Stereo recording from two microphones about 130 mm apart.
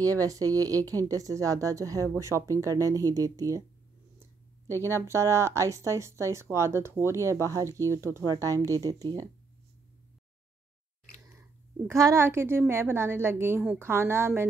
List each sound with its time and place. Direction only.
0.0 s speech: 25° right (ahead or behind)
4.6 s speech: 20° left (ahead or behind)
4.9 s speech: 20° right (ahead or behind)
11.3 s speech: 25° right (ahead or behind)